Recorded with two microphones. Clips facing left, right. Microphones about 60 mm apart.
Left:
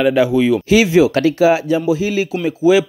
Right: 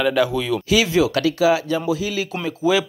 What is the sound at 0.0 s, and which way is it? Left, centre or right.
Speech, centre.